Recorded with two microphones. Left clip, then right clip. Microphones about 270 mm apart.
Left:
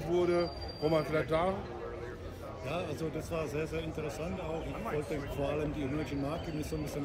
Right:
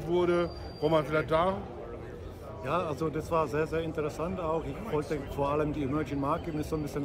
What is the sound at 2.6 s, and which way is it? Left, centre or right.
Speech, centre.